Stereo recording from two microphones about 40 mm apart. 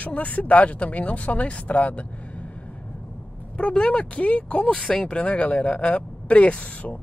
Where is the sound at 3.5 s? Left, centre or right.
Left.